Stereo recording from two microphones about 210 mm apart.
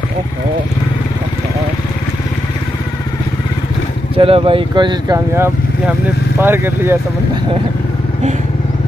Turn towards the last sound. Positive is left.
turn(degrees=-10)  # may be behind; listen again after turning